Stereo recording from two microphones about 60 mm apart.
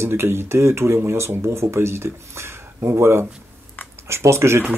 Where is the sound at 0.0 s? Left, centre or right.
Right.